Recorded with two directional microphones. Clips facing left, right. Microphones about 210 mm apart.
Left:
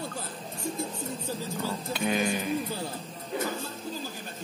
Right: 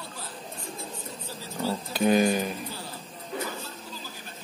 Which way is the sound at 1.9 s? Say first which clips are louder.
Right 7 dB; 40° right (ahead or behind).